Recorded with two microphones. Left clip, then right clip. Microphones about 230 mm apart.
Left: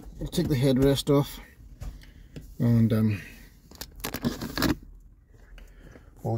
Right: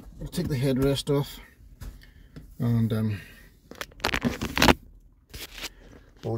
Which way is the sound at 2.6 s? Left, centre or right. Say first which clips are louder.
Left 3 dB; centre.